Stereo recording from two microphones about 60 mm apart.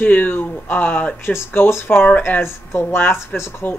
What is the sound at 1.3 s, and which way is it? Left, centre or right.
Speech, left.